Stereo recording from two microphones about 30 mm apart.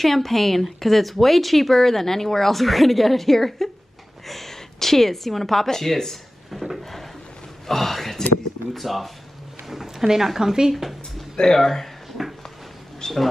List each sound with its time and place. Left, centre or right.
0.0 s speech: centre
7.6 s speech: centre
9.7 s speech: centre
10.7 s speech: centre
11.5 s speech: centre
13.0 s a man's voice: left